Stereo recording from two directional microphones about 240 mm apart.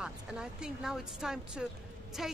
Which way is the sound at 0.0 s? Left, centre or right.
Centre.